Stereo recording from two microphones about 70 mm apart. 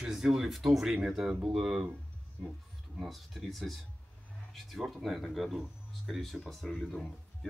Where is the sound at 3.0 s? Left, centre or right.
Centre.